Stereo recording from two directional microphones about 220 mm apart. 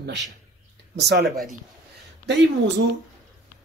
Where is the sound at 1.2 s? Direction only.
Centre (ahead or behind).